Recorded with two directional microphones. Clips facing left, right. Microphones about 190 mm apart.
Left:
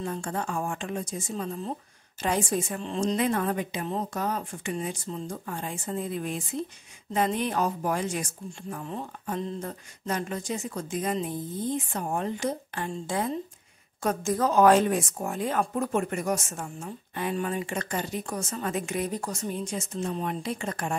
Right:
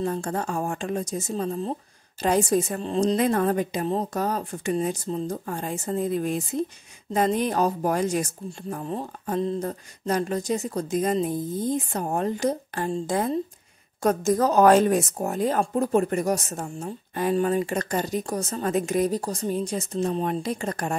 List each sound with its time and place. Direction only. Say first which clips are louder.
0.0 s a woman's voice: right 5 dB; 40° right (ahead or behind)